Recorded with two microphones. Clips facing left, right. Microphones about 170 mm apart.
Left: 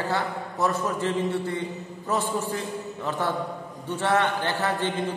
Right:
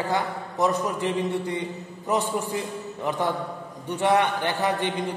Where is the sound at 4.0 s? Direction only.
15° right (ahead or behind).